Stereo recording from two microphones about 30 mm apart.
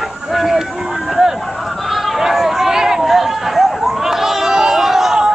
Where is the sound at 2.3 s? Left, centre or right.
Centre.